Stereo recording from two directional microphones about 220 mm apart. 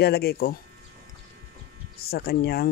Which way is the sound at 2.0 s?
45° left (ahead or behind).